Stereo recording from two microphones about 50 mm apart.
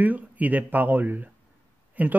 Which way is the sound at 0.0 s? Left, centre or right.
Right.